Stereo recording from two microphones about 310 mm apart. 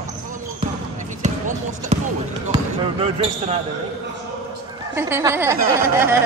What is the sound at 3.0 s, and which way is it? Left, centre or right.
Speech, centre.